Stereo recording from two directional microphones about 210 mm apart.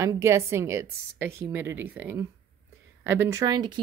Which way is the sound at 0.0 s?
15° right (ahead or behind).